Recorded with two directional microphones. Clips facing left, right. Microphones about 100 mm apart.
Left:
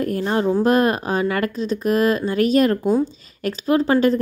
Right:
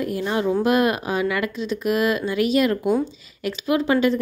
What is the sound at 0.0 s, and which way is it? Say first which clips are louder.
A woman's voice: left 3 dB; 40° left (ahead or behind).